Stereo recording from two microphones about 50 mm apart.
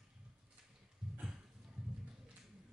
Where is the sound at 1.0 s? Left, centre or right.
Centre.